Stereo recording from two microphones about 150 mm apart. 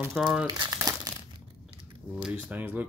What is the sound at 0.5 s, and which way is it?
Speech, 30° right (ahead or behind).